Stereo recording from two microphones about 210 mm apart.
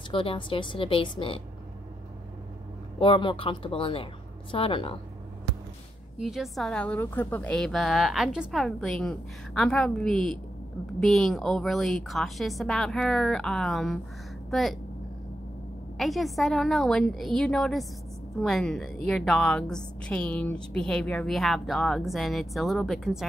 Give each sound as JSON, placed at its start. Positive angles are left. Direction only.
{"t": 0.1, "sound": "a woman's voice", "side_deg": 25}
{"t": 3.0, "sound": "a woman's voice", "side_deg": 25}
{"t": 6.1, "sound": "a woman's voice", "side_deg": 0}
{"t": 16.0, "sound": "a woman's voice", "side_deg": 0}